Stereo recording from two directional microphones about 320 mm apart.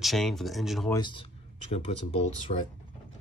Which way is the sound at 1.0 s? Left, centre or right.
Centre.